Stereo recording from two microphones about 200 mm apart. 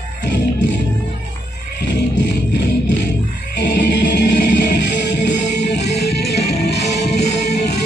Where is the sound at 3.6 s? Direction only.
60° left (ahead or behind).